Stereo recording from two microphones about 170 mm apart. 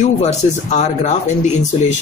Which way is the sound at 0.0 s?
40° left (ahead or behind).